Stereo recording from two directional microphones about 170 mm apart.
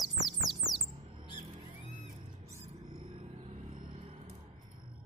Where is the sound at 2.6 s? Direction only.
40° right (ahead or behind).